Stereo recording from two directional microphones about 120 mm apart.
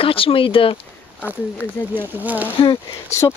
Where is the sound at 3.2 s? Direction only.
35° left (ahead or behind).